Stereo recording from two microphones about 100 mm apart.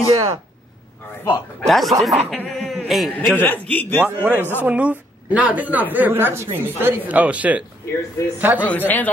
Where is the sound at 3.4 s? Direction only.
15° left (ahead or behind).